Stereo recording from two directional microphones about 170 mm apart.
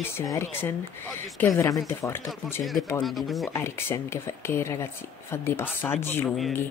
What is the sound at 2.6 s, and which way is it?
Speech, centre (ahead or behind).